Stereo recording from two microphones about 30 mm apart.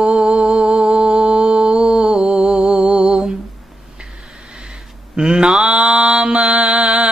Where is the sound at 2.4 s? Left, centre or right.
Right.